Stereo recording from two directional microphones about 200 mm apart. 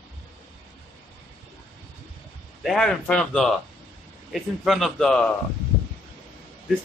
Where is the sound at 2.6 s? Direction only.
Centre (ahead or behind).